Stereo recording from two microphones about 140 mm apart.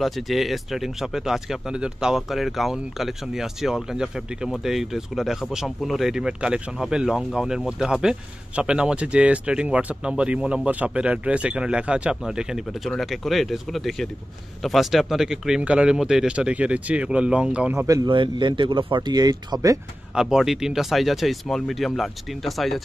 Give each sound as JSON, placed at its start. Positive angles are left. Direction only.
{"t": 0.0, "sound": "speech", "side_deg": 0}
{"t": 17.8, "sound": "speech", "side_deg": -30}
{"t": 20.2, "sound": "speech", "side_deg": -5}